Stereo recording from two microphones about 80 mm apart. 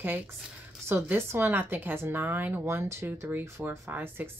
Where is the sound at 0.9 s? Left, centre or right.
Right.